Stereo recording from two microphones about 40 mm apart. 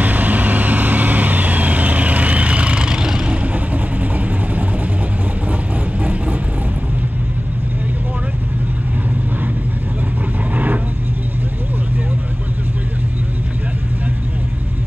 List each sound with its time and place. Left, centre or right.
0.0 s vehicle: right
3.4 s vehicle: right
10.5 s vehicle: right